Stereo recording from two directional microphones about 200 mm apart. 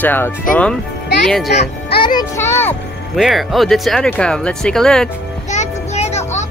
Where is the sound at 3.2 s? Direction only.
Centre (ahead or behind).